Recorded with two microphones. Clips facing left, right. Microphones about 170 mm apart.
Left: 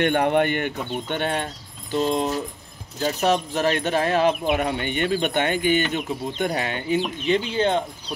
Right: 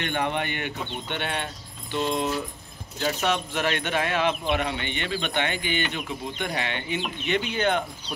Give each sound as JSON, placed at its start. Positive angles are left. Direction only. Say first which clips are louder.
{"t": 0.0, "sound": "speech", "louder": "left 8 dB", "side_deg": 50}